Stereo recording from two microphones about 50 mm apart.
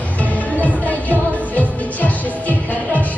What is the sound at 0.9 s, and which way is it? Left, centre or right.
Music, left.